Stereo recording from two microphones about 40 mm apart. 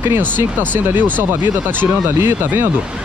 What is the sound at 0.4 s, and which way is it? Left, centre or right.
Speech, right.